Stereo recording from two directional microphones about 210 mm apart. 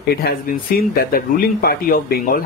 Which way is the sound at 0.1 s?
45° left (ahead or behind).